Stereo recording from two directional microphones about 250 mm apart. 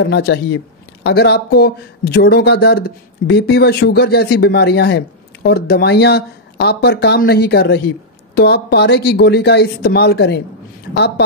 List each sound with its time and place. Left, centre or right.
0.0 s speech: left